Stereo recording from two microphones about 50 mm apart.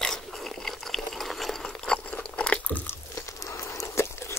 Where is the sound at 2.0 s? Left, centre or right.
Left.